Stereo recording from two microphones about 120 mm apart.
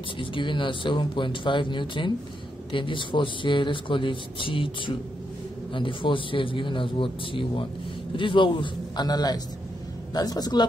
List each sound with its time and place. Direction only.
0.2 s a man's voice: 45° left (ahead or behind)